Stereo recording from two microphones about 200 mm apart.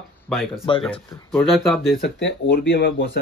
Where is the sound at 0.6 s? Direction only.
25° left (ahead or behind).